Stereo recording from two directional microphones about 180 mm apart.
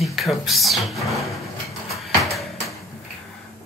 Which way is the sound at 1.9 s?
Centre (ahead or behind).